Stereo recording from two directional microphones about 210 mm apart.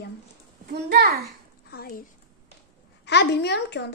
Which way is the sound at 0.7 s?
50° right (ahead or behind).